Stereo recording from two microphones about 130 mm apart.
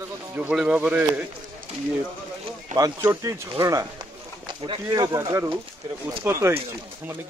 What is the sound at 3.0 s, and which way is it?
Speech, 25° right (ahead or behind).